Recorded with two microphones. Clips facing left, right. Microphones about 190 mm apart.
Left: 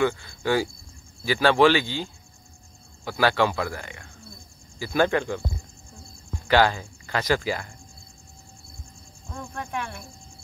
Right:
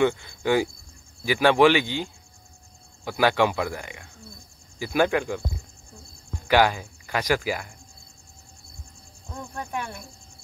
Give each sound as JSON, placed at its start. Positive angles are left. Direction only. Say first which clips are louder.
{"t": 0.0, "sound": "speech", "louder": "right 2 dB", "side_deg": -20}
{"t": 3.1, "sound": "speech", "louder": "right 1 dB", "side_deg": -15}
{"t": 6.4, "sound": "speech", "louder": "even", "side_deg": -10}